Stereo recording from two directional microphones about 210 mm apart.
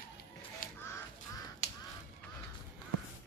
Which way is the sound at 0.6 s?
40° left (ahead or behind).